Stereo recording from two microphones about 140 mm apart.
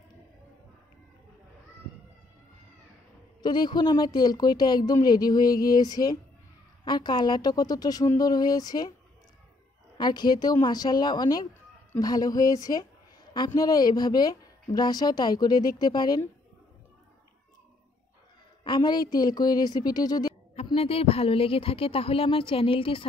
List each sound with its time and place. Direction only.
3.4 s a woman's voice: 30° left (ahead or behind)
9.9 s a woman's voice: 30° left (ahead or behind)
18.6 s a woman's voice: 35° left (ahead or behind)
20.5 s a woman's voice: 45° left (ahead or behind)